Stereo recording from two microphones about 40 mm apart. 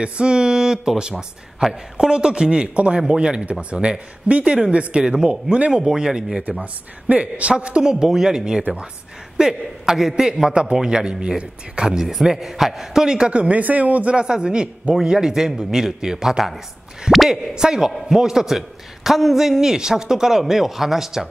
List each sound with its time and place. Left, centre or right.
0.0 s a man's voice: right
6.6 s a man's voice: right; by 12.0 s centre
12.0 s a man's voice: centre
13.3 s a man's voice: right
13.6 s a man's voice: right
14.1 s a man's voice: right